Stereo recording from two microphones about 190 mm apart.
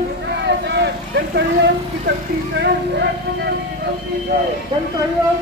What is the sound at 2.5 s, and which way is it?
Speech, 60° right (ahead or behind).